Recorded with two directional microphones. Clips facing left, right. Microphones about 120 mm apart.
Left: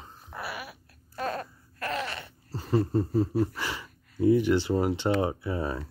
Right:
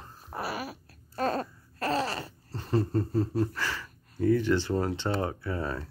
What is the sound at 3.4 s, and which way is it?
Speech, 15° left (ahead or behind).